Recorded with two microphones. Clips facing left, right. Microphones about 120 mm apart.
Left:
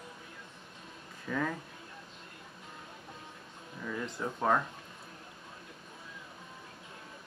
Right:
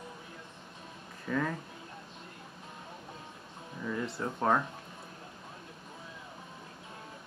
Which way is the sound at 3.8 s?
5° right (ahead or behind).